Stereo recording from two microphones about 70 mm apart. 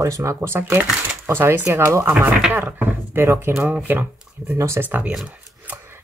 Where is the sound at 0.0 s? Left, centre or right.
Right.